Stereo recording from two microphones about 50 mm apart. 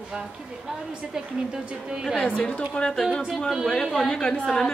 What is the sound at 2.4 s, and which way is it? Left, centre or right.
Speech, centre.